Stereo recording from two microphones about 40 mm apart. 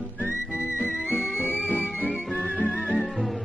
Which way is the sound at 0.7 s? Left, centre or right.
Left.